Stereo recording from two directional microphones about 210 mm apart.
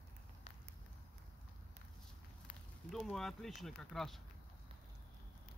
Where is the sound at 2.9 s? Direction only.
Centre (ahead or behind).